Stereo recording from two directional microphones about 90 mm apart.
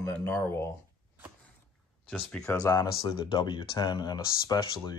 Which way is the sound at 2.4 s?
40° left (ahead or behind).